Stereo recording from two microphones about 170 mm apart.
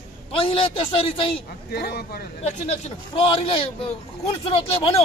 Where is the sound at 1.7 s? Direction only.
70° left (ahead or behind).